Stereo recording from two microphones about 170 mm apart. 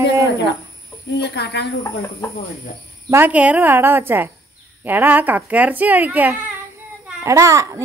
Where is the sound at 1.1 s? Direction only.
80° left.